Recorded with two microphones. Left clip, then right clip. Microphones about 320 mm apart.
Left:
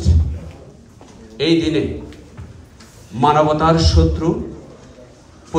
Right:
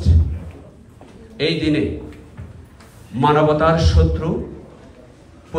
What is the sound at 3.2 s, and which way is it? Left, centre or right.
A man's voice, centre.